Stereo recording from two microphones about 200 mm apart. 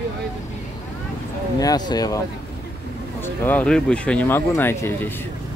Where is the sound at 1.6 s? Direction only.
20° left (ahead or behind).